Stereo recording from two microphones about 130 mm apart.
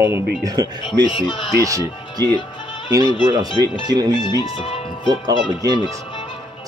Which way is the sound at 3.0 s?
35° left (ahead or behind).